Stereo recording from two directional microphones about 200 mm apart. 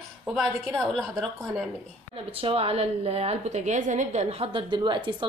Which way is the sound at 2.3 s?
30° right (ahead or behind).